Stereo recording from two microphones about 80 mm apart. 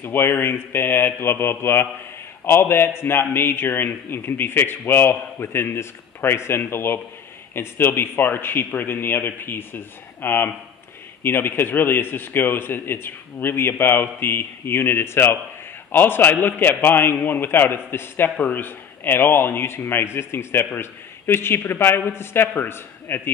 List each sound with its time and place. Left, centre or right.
0.0 s a man's voice: left